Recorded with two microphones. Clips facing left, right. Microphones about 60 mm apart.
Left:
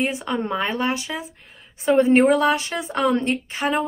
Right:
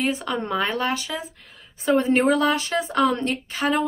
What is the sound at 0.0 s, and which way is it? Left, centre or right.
Speech, left.